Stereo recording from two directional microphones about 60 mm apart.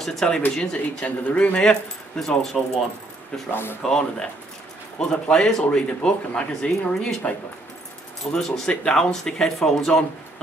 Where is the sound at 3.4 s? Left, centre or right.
Left.